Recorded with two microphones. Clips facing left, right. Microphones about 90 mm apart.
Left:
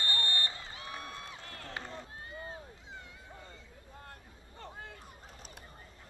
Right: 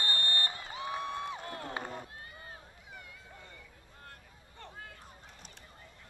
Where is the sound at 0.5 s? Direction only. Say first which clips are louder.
Right 6 dB; 20° right (ahead or behind).